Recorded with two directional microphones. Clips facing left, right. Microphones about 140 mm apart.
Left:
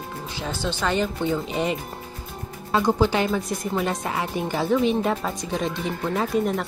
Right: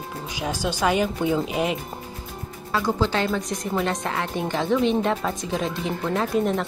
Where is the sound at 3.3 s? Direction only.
Centre (ahead or behind).